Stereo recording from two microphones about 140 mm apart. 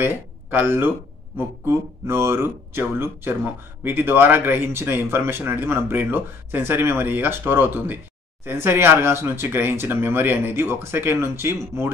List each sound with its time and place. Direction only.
0.0 s speech: 15° right (ahead or behind)
2.0 s a man's voice: 20° right (ahead or behind)